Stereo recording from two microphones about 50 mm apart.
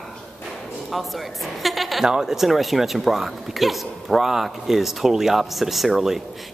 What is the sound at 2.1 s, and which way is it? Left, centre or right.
Speech, centre.